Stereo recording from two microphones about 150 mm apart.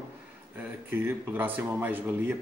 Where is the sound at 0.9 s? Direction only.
15° right (ahead or behind).